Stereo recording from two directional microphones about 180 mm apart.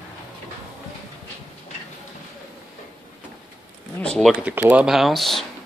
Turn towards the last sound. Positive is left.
turn(degrees=0)  # may be behind; listen again after turning